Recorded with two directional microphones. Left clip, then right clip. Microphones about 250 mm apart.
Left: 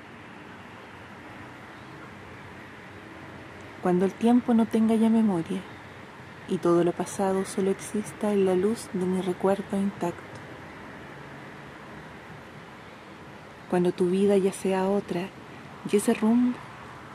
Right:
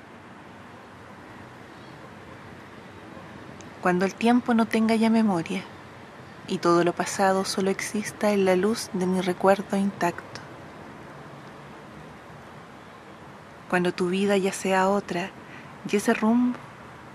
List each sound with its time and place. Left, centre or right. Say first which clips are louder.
3.8 s speech: right 2 dB; right
13.7 s speech: right 1 dB; right
14.1 s speech: left 1 dB; centre
14.8 s speech: right 6 dB; right
15.0 s speech: right 2 dB; centre